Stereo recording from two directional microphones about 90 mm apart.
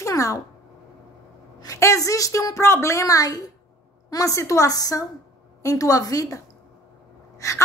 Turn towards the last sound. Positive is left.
turn(degrees=35)  # may be behind; listen again after turning